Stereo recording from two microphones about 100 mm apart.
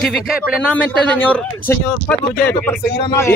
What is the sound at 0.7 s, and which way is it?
Speech, 15° left (ahead or behind).